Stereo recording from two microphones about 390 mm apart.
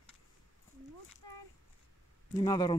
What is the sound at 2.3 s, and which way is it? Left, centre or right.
Speech, centre.